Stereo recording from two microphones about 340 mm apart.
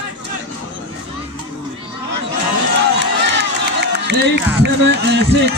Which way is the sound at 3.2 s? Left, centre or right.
Right.